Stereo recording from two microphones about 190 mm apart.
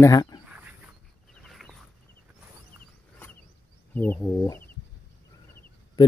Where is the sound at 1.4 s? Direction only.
Centre (ahead or behind).